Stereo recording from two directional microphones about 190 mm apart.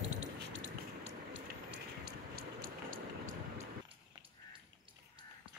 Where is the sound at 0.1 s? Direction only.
75° right (ahead or behind); by 3.6 s 45° right (ahead or behind).